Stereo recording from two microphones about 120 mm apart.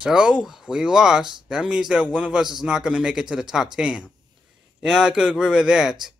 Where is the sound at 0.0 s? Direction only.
5° right (ahead or behind).